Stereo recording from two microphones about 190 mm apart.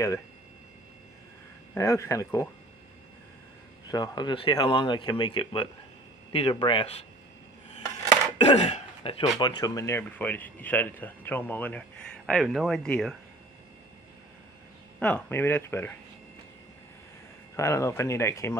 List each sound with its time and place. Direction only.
1.8 s speech: 15° left (ahead or behind)
3.9 s speech: 20° left (ahead or behind)
8.4 s speech: 35° left (ahead or behind)
9.4 s speech: 20° left (ahead or behind); by 13.1 s 5° left (ahead or behind)
15.0 s speech: 5° left (ahead or behind)
17.6 s speech: 15° left (ahead or behind)